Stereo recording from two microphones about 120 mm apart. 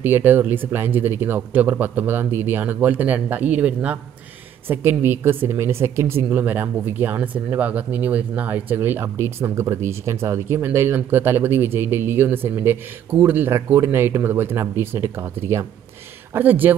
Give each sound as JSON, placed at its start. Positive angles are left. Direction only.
{"t": 0.0, "sound": "a woman's voice", "side_deg": -15}